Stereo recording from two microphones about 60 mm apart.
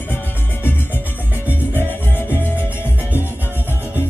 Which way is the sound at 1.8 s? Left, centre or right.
Left.